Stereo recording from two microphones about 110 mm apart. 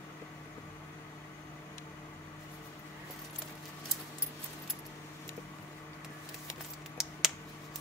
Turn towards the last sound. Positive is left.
turn(degrees=-5)  # may be behind; listen again after turning